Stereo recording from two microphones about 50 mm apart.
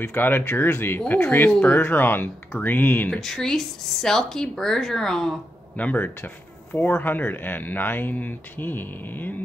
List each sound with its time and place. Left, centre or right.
0.1 s speech: left
3.2 s speech: centre
5.8 s speech: left